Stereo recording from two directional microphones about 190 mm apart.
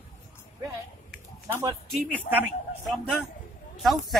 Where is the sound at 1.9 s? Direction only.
10° left (ahead or behind).